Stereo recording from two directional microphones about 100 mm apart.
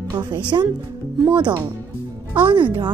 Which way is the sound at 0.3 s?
50° right (ahead or behind).